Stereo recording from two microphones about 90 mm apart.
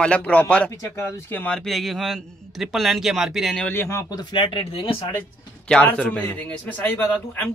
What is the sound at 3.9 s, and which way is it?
Speech, 50° left (ahead or behind).